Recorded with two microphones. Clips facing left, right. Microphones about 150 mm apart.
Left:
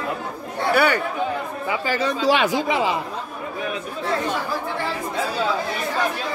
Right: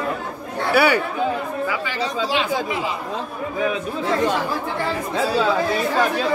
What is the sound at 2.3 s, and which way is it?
Speech, 60° left (ahead or behind).